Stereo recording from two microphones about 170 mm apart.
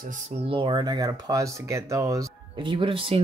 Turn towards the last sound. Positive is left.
turn(degrees=-30)  # may be behind; listen again after turning